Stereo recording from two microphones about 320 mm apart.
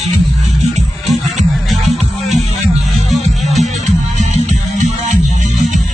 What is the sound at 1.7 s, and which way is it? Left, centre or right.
Music, centre.